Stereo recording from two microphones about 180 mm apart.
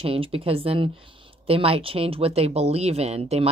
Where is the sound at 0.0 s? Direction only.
30° right (ahead or behind).